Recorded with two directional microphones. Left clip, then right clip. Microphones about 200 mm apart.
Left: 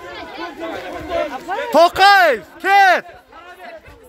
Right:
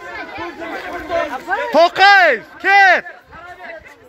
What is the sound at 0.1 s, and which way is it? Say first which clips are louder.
Chatter: right 3 dB; 45° left (ahead or behind).